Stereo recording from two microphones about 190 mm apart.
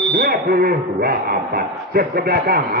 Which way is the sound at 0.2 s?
50° right (ahead or behind).